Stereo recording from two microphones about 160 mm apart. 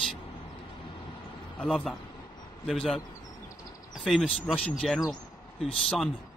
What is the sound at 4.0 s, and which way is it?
Speech, centre (ahead or behind).